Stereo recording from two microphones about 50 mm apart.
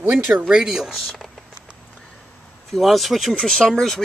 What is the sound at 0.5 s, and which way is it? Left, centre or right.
Speech, centre.